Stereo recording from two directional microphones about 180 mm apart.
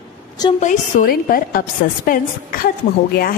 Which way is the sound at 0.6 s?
45° left (ahead or behind).